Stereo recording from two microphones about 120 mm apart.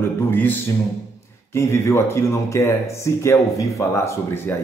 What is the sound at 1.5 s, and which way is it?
Speech, 25° left (ahead or behind).